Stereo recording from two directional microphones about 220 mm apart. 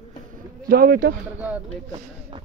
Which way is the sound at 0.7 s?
40° right (ahead or behind).